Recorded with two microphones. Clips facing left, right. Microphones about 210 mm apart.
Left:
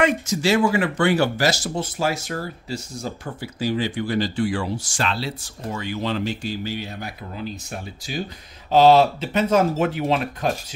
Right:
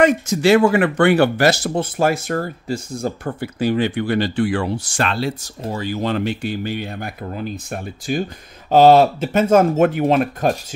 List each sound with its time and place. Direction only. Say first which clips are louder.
0.0 s speech: right 5 dB; 60° right (ahead or behind)
5.6 s speech: right 4 dB; 35° right (ahead or behind); by 10.5 s 50° right (ahead or behind)